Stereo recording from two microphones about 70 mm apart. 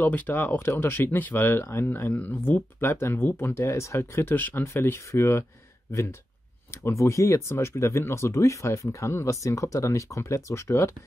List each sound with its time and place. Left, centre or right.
0.0 s speech: left